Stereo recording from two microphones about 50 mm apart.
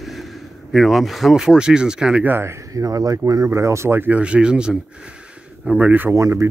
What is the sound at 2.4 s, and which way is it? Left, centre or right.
Speech, right.